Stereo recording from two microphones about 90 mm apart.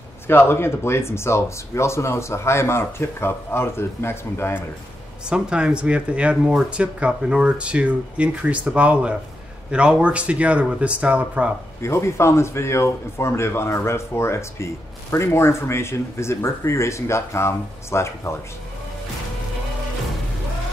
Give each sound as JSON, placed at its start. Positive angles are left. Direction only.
{"t": 0.3, "sound": "speech", "side_deg": 25}
{"t": 5.3, "sound": "speech", "side_deg": -10}
{"t": 11.8, "sound": "a man's voice", "side_deg": 30}